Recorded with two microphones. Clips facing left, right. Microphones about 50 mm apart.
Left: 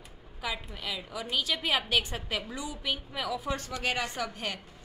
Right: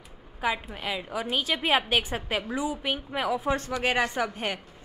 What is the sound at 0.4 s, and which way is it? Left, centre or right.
A woman's voice, right.